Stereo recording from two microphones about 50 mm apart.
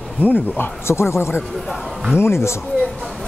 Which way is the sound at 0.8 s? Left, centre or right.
Left.